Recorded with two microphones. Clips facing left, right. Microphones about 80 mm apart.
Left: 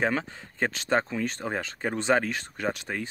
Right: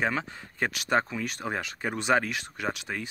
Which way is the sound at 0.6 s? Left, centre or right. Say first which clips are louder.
Left 1 dB; left.